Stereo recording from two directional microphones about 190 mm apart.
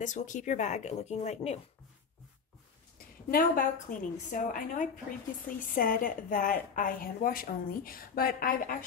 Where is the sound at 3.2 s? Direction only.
50° left (ahead or behind).